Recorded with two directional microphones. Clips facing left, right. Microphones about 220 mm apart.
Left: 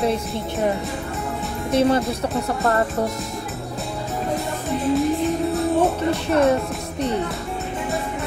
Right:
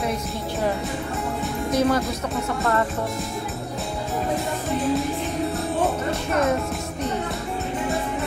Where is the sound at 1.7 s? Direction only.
25° left (ahead or behind).